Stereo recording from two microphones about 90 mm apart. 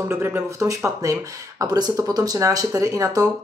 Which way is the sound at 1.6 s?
45° right (ahead or behind).